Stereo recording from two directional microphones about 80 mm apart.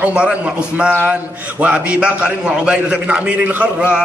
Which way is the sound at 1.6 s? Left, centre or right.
Centre.